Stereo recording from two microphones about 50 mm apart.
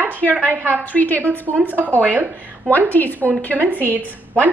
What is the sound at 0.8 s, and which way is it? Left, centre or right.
Speech, left.